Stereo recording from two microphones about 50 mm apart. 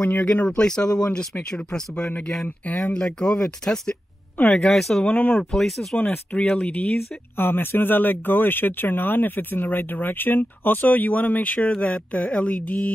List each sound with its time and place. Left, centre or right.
0.0 s speech: left
0.3 s speech: left
5.0 s mantra: left
5.4 s speech: centre
5.9 s mantra: left
7.3 s speech: left
11.7 s mantra: left